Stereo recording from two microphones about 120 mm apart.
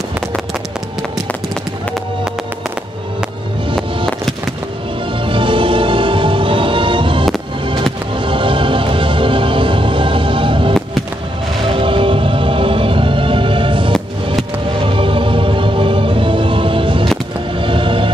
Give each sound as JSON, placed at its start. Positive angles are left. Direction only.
{"t": 5.2, "sound": "music", "side_deg": -45}
{"t": 8.3, "sound": "music", "side_deg": -45}